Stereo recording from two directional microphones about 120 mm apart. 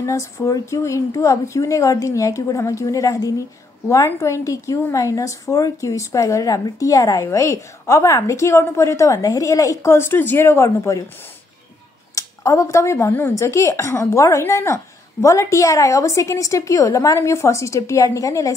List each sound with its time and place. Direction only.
0.0 s a woman's voice: 25° left (ahead or behind)
12.2 s a woman's voice: 25° left (ahead or behind)